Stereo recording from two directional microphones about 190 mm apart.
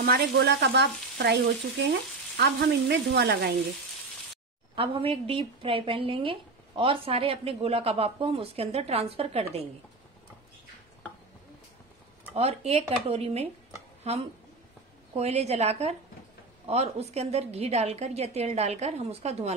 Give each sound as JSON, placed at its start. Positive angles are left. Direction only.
{"t": 0.0, "sound": "frying", "side_deg": -55}
{"t": 4.7, "sound": "a woman's voice", "side_deg": -25}
{"t": 12.4, "sound": "a woman's voice", "side_deg": -35}